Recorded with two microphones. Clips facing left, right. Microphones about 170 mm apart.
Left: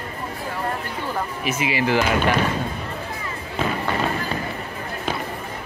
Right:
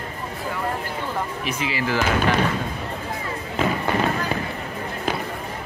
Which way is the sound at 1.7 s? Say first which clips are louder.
Left 4 dB; 20° left (ahead or behind).